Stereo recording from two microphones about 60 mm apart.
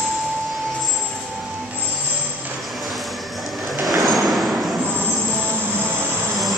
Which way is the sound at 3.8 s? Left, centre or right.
Centre.